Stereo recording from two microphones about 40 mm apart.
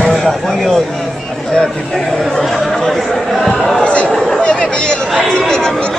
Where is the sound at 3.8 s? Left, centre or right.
Left.